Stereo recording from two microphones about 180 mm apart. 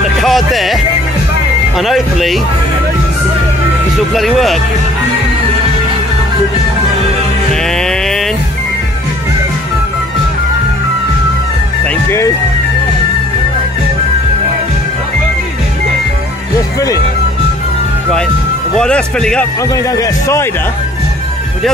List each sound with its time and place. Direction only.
0.2 s music: centre (ahead or behind)
1.8 s speech: centre (ahead or behind)
3.9 s speech: centre (ahead or behind)
7.7 s a sound: 5° left (ahead or behind)
11.8 s music: 10° left (ahead or behind)
18.8 s speech: 5° left (ahead or behind)
19.7 s a man's voice: 20° left (ahead or behind)